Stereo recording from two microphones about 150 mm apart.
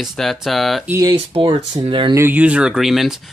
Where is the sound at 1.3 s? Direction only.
35° right (ahead or behind).